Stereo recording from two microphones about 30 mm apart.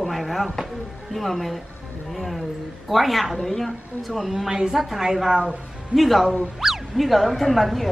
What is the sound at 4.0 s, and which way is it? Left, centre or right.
Speech, centre.